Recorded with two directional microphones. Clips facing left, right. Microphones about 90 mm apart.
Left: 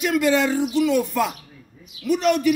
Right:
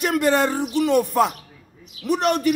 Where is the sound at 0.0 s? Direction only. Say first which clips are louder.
Even; 55° right (ahead or behind).